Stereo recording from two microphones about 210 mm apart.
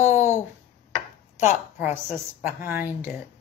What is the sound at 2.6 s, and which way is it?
Speech, 10° right (ahead or behind).